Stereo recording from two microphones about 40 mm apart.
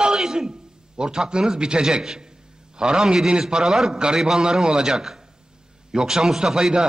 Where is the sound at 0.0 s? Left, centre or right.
Centre.